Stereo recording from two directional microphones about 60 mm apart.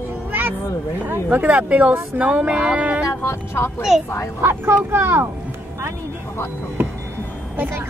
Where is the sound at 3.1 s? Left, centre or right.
Left.